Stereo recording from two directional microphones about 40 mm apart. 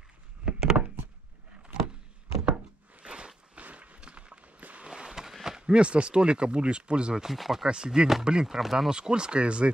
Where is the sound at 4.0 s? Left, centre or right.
Right.